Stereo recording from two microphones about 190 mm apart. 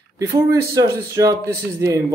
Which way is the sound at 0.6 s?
15° right (ahead or behind).